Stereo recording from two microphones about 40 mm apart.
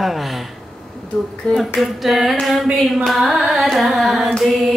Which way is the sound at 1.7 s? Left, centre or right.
Centre.